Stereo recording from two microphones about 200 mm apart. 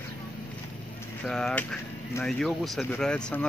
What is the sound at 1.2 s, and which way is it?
Speech, 5° left (ahead or behind).